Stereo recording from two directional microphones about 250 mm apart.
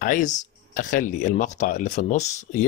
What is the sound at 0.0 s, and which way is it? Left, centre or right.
Speech, left.